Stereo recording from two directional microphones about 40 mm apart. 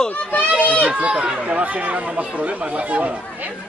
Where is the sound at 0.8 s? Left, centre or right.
Right.